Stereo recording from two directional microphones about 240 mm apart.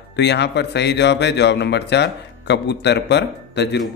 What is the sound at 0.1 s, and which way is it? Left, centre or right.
Speech, left.